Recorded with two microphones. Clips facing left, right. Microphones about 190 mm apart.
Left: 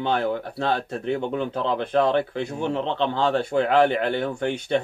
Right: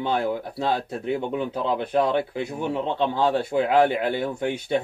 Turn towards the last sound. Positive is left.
turn(degrees=-5)  # may be behind; listen again after turning